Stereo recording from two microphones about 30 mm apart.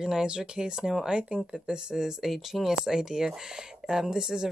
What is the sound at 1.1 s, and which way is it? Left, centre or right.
Speech, right.